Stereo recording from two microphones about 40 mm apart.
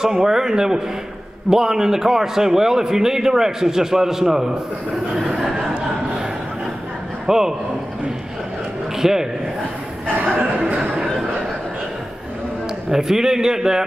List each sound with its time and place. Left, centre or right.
0.0 s a man's voice: centre
4.9 s a sound: centre
7.2 s a man's voice: centre
8.9 s speech: centre
10.8 s a sound: centre
12.9 s a man's voice: centre